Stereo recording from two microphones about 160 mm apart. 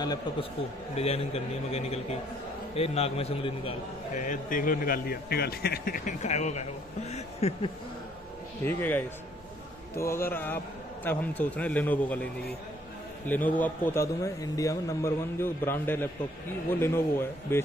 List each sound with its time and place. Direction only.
0.0 s a man's voice: 25° left (ahead or behind)
0.9 s a man's voice: 40° left (ahead or behind)
4.1 s a man's voice: 55° left (ahead or behind)
8.6 s a man's voice: 10° left (ahead or behind)
13.3 s a man's voice: 10° left (ahead or behind)